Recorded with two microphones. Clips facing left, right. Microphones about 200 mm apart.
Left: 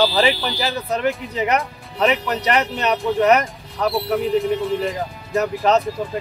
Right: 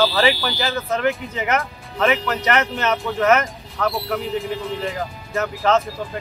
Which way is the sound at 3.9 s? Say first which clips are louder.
Left 5 dB; centre (ahead or behind).